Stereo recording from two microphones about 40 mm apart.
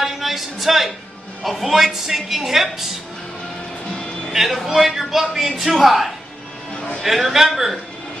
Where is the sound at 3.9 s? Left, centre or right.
Centre.